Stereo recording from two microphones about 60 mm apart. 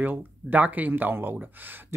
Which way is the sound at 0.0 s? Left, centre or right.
Right.